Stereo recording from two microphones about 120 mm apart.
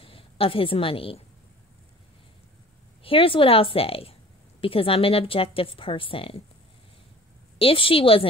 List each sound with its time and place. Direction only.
0.0 s a woman's voice: 50° left (ahead or behind)
3.0 s a woman's voice: 50° left (ahead or behind)
7.5 s a woman's voice: 50° left (ahead or behind)